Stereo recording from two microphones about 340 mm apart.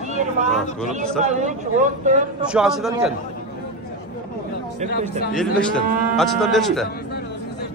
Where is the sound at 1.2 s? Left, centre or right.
Right.